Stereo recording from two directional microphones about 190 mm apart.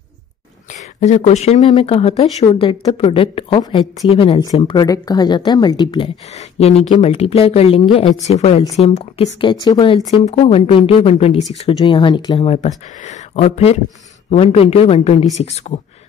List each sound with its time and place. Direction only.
1.0 s speech: 35° left (ahead or behind)